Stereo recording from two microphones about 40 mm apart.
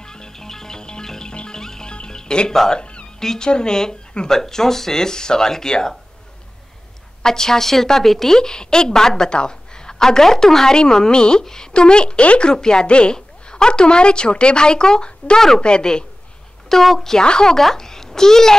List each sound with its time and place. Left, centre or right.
0.0 s music: centre
3.2 s a woman's voice: centre
7.2 s a woman's voice: centre
8.4 s a woman's voice: centre
16.6 s a woman's voice: centre
17.2 s a woman's voice: centre